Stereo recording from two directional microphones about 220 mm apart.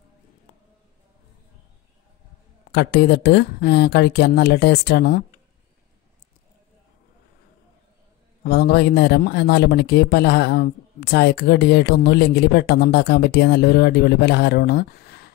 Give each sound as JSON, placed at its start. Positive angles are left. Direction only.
{"t": 2.7, "sound": "speech", "side_deg": 50}
{"t": 8.5, "sound": "speech", "side_deg": 45}